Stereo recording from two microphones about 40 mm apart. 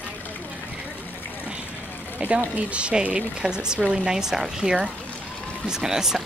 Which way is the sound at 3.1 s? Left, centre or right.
Centre.